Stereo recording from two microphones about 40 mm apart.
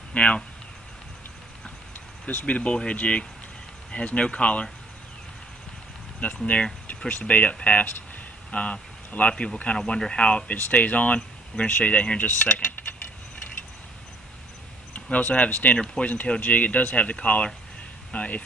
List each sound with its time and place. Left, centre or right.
0.1 s speech: left
2.2 s speech: left
6.2 s speech: left
15.0 s speech: left